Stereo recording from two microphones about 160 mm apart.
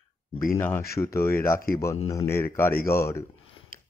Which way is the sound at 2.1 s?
15° left (ahead or behind).